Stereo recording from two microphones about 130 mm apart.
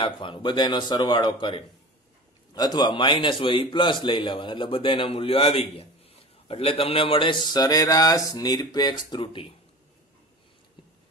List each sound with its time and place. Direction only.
0.0 s a man's voice: 40° left (ahead or behind)